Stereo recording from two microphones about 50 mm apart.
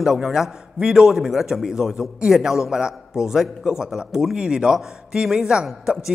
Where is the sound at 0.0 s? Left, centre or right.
Centre.